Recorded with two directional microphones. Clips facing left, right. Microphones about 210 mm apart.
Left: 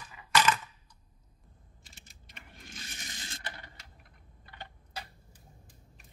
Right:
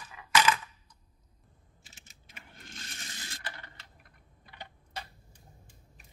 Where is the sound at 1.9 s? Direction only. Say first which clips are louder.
Even; 5° right (ahead or behind).